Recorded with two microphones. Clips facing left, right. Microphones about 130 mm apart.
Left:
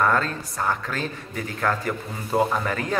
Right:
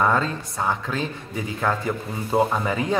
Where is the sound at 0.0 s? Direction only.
10° right (ahead or behind).